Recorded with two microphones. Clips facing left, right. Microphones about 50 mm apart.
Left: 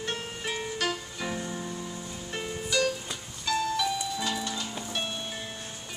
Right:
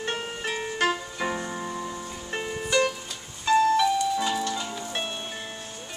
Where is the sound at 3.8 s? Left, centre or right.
Centre.